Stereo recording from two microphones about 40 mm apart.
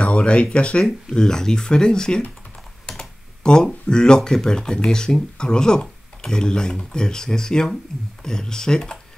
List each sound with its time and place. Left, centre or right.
0.0 s speech: left
0.8 s speech: centre